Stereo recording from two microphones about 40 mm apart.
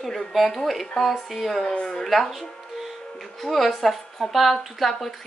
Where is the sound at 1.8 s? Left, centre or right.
Centre.